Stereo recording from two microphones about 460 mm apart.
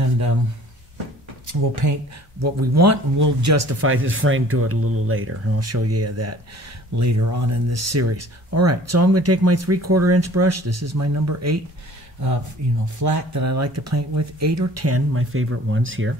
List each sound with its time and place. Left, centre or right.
1.5 s speech: right
12.8 s speech: right